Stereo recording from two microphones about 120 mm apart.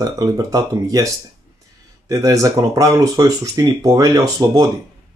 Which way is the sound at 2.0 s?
30° right (ahead or behind).